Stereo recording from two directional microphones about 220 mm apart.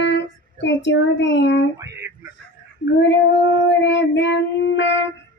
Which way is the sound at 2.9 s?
50° left (ahead or behind).